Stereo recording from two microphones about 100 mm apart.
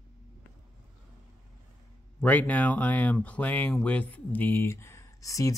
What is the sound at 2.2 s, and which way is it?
Speech, 15° left (ahead or behind).